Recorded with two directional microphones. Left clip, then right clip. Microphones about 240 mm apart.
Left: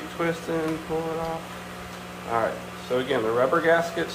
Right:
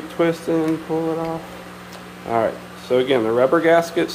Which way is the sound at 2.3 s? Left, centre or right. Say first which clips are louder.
Right 5 dB; right.